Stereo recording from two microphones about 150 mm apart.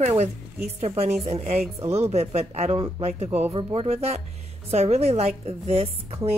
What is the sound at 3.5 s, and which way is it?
Speech, 40° right (ahead or behind).